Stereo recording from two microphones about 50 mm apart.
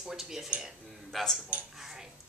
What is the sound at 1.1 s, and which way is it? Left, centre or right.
Speech, centre.